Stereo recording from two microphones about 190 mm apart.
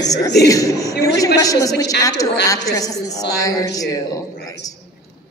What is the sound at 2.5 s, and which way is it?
A woman's voice, 20° left (ahead or behind).